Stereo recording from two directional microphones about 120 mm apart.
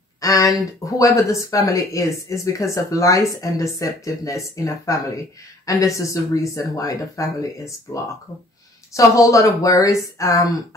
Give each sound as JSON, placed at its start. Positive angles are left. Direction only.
{"t": 0.2, "sound": "speech", "side_deg": 30}